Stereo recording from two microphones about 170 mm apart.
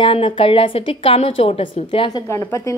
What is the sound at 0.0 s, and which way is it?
A woman's voice, 30° left (ahead or behind).